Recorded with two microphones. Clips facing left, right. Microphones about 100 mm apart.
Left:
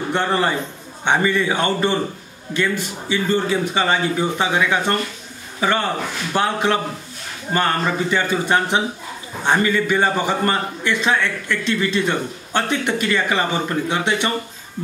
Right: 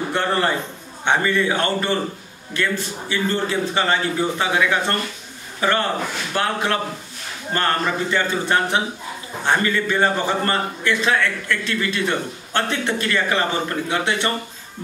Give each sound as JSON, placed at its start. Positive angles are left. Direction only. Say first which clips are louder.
{"t": 0.1, "sound": "a man's voice", "louder": "left 2 dB", "side_deg": 20}